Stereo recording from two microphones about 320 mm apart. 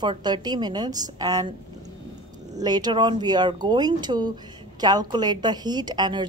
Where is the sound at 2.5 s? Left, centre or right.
Centre.